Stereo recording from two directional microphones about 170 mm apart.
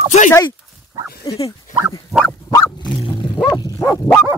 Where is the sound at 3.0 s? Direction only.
30° left (ahead or behind).